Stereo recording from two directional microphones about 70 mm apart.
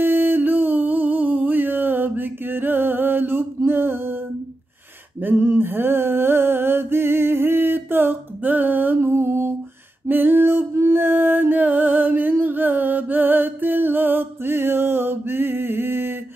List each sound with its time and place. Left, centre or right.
0.0 s music: right
5.2 s a sound: right
10.0 s music: right